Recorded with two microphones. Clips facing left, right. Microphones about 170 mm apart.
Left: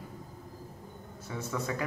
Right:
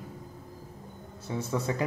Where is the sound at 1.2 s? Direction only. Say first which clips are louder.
Right 4 dB; 30° right (ahead or behind).